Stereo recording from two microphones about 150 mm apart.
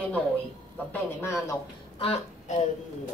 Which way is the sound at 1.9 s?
40° left (ahead or behind).